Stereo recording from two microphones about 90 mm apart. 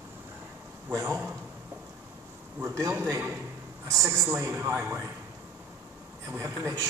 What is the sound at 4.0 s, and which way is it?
Speech, 35° right (ahead or behind).